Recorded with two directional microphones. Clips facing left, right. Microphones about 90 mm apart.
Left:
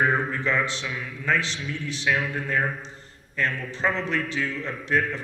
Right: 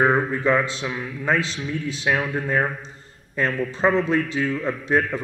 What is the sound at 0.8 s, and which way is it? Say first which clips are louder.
A man's voice: right 3 dB; 25° right (ahead or behind).